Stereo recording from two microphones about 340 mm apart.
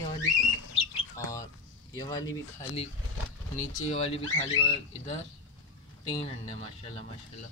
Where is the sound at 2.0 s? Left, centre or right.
Centre.